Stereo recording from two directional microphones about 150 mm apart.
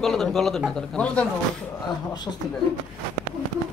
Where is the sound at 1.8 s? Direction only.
30° left (ahead or behind).